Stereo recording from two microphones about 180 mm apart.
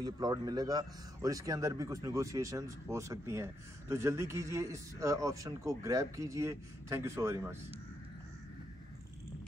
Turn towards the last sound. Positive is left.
turn(degrees=-15)  # may be behind; listen again after turning